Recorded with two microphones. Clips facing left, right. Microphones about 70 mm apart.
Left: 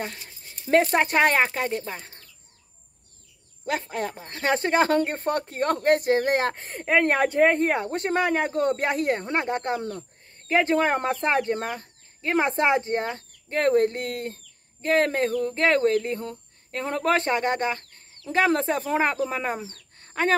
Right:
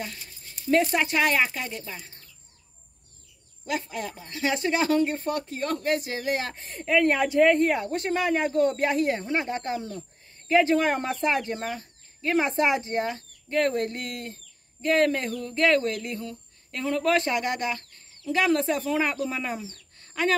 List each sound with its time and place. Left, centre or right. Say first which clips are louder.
0.7 s speech: left 3 dB; left
3.6 s speech: left 3 dB; left
9.2 s speech: left 2 dB; left
10.5 s speech: even; left
12.2 s speech: left 1 dB; left